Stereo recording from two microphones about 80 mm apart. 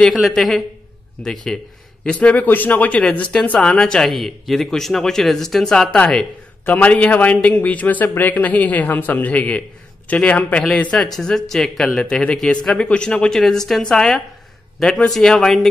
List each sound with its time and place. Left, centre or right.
0.1 s a man's voice: centre
11.1 s speech: centre